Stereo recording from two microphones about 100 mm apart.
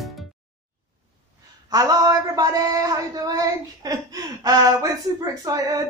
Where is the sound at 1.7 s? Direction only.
35° right (ahead or behind).